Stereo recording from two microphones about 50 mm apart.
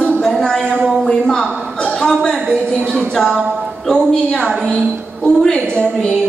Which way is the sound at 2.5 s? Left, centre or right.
Right.